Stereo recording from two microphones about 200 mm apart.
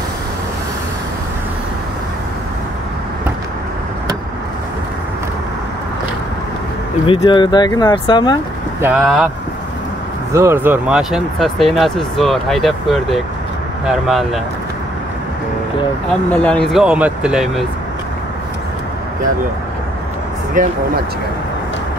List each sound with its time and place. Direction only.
7.1 s speech: 25° left (ahead or behind)
8.8 s speech: 5° right (ahead or behind)
10.3 s speech: 15° right (ahead or behind)
16.1 s speech: 5° left (ahead or behind)
20.6 s speech: 40° right (ahead or behind)